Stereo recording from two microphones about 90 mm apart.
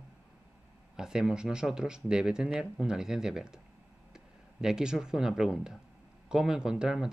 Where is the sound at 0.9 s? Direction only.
5° right (ahead or behind).